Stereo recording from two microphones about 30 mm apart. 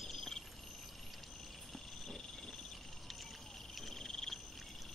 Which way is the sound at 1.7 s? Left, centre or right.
Centre.